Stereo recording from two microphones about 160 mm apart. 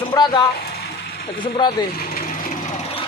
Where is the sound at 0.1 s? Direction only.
25° left (ahead or behind).